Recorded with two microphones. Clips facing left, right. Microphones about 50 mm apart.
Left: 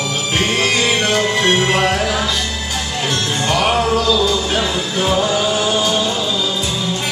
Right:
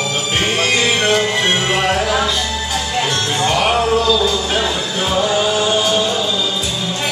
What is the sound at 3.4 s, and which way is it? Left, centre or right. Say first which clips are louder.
Music: right 1 dB; centre.